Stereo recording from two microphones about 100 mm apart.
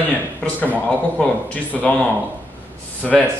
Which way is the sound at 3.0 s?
15° left (ahead or behind).